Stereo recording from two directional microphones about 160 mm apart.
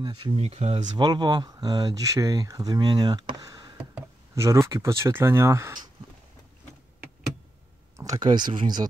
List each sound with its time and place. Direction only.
0.0 s speech: 25° right (ahead or behind)
0.4 s speech: 40° right (ahead or behind)
1.0 s speech: 25° right (ahead or behind)
3.7 s speech: 15° right (ahead or behind)
8.0 s speech: 25° right (ahead or behind)